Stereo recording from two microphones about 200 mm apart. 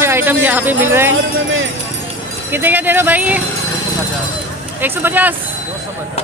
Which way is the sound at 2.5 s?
10° right (ahead or behind).